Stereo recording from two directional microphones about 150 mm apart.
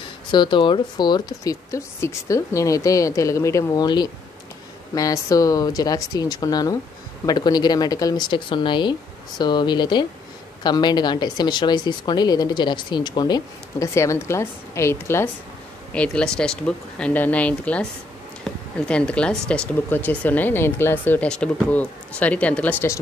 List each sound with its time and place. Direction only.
0.3 s speech: 30° left (ahead or behind)
15.9 s speech: 5° left (ahead or behind)
18.5 s a sound: 5° left (ahead or behind)
18.9 s speech: 5° left (ahead or behind)